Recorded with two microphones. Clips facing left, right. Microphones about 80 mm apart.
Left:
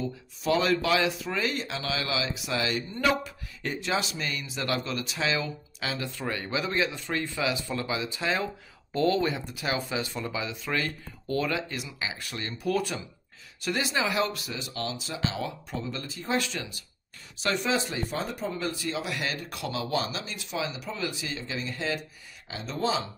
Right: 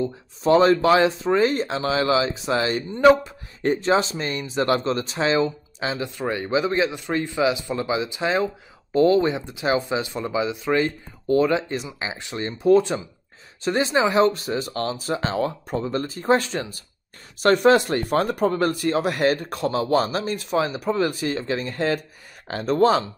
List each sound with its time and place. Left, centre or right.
0.0 s speech: right
17.4 s speech: right